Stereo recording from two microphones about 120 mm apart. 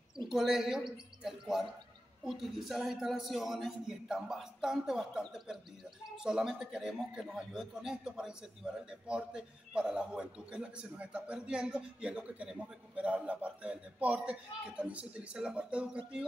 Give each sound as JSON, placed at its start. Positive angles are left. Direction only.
{"t": 0.3, "sound": "a man's voice", "side_deg": -5}